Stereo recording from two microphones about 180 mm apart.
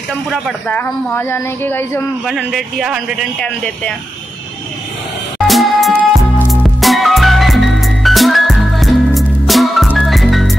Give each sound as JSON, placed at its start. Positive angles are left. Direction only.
{"t": 0.3, "sound": "a man's voice", "side_deg": 0}
{"t": 0.7, "sound": "speech", "side_deg": 10}
{"t": 2.2, "sound": "a man's voice", "side_deg": 0}
{"t": 5.5, "sound": "music", "side_deg": 0}